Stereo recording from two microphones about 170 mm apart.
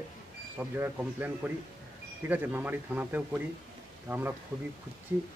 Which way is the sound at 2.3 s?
10° right (ahead or behind).